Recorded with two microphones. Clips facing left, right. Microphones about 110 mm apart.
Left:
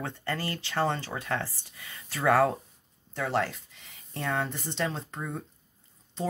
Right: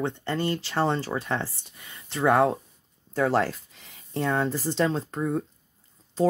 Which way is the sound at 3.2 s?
40° right (ahead or behind).